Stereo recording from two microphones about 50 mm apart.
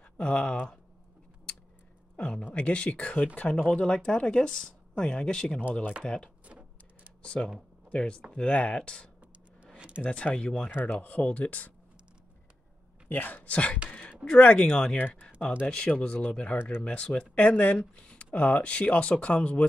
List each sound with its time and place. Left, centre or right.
0.2 s speech: left
2.4 s speech: left
9.8 s a sound: right
10.0 s speech: left
13.1 s speech: left